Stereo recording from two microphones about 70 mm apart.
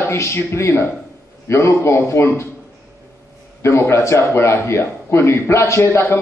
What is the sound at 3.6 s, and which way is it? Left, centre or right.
A man's voice, left.